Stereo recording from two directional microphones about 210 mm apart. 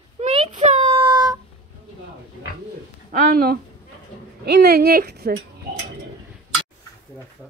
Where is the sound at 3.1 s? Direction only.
35° right (ahead or behind).